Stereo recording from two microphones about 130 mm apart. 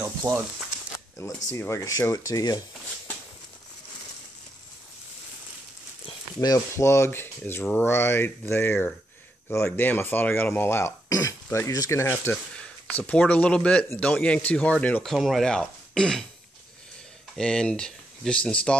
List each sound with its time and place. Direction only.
0.0 s speech: 20° right (ahead or behind)
1.2 s speech: 20° left (ahead or behind)
6.4 s speech: 25° left (ahead or behind)
15.1 s speech: centre (ahead or behind)
17.4 s speech: 5° left (ahead or behind)